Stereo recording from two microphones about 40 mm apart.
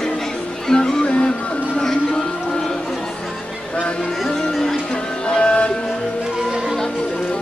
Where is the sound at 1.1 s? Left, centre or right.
Left.